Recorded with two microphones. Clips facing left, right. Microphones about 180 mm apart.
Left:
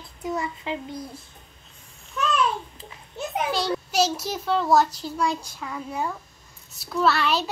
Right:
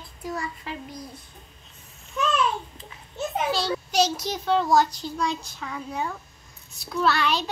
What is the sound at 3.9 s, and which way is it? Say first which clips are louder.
A child's voice: right 2 dB; 5° left (ahead or behind).